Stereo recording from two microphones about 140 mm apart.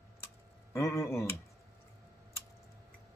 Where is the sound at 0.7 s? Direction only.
20° left (ahead or behind).